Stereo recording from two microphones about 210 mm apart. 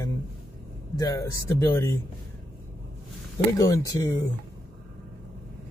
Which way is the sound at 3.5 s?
15° left (ahead or behind).